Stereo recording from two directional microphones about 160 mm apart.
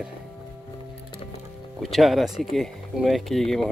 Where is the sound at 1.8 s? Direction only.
Centre (ahead or behind).